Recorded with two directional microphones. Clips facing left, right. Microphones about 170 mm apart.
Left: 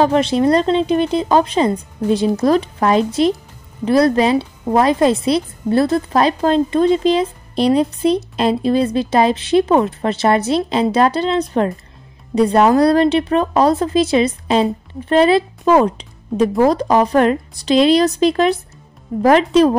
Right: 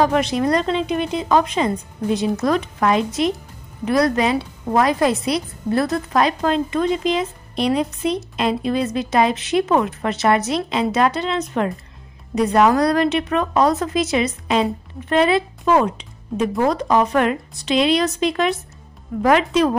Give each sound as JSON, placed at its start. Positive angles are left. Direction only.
{"t": 0.0, "sound": "a woman's voice", "side_deg": 30}